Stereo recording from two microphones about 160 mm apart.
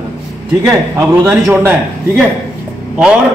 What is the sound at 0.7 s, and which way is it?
A man's voice, 15° right (ahead or behind).